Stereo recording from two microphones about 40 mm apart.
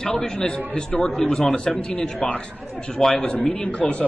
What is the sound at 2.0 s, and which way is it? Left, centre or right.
Speech, left.